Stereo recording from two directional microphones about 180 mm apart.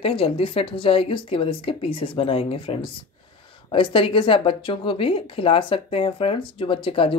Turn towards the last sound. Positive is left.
turn(degrees=30)  # may be behind; listen again after turning